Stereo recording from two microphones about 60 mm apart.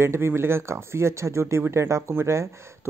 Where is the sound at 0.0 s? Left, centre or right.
Right.